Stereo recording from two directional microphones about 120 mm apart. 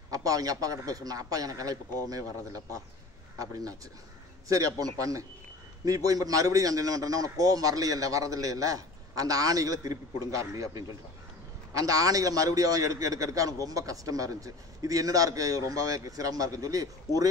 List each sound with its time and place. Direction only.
0.1 s a man's voice: 30° right (ahead or behind)
3.3 s a man's voice: 30° right (ahead or behind)